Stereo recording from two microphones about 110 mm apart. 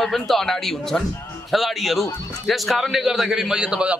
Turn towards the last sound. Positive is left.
turn(degrees=-10)  # may be behind; listen again after turning